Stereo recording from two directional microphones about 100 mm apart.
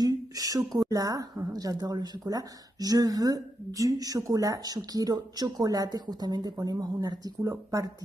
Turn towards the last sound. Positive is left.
turn(degrees=-35)  # may be behind; listen again after turning